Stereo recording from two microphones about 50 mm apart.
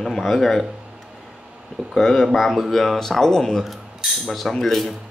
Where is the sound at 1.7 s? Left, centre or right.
Centre.